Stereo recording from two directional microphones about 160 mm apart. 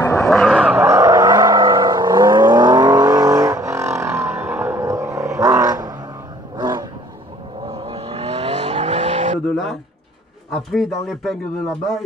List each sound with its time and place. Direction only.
0.3 s vehicle: centre (ahead or behind); by 5.9 s 20° right (ahead or behind)
6.5 s roaring cats: 25° right (ahead or behind)
7.6 s vehicle: 35° right (ahead or behind)
10.7 s speech: centre (ahead or behind)